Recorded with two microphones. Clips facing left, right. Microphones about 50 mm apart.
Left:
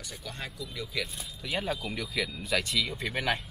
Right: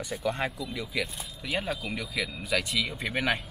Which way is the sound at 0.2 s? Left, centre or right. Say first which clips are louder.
Right 10 dB; right.